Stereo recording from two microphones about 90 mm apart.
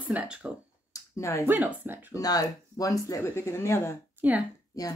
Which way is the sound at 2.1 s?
45° left (ahead or behind).